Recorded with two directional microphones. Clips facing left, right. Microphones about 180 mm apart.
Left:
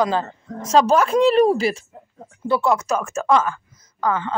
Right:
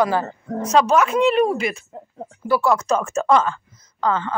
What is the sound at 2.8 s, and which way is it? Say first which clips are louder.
Speech: right 2 dB; 5° left (ahead or behind).